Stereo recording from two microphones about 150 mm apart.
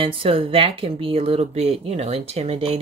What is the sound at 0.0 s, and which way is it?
Speech, 35° right (ahead or behind).